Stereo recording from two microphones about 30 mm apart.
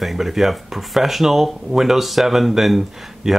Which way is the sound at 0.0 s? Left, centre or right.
Centre.